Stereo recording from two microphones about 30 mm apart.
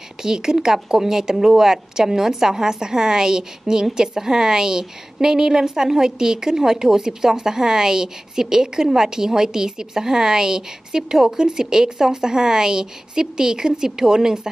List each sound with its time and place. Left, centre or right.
0.2 s a woman's voice: right